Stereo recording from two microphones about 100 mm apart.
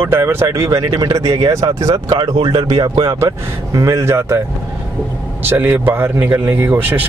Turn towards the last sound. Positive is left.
turn(degrees=-20)  # may be behind; listen again after turning